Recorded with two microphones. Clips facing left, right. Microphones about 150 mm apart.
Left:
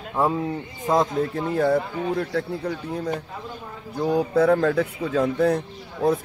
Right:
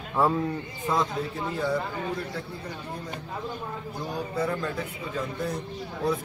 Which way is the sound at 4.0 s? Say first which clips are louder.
Left 11 dB; 70° left (ahead or behind).